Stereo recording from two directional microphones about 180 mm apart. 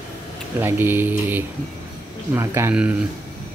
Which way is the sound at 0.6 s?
10° right (ahead or behind).